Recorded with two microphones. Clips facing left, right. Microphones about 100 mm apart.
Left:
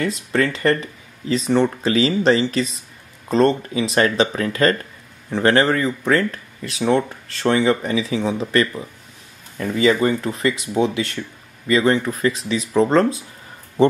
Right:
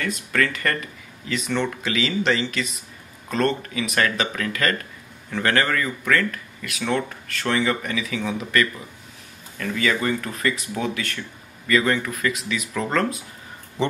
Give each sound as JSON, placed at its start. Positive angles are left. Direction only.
{"t": 0.0, "sound": "speech", "side_deg": 30}